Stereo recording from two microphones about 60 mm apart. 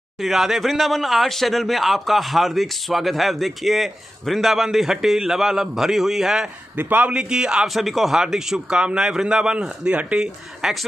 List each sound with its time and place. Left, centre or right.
0.2 s speech: centre
6.8 s a man's voice: right
7.1 s a man's voice: centre
7.7 s a man's voice: centre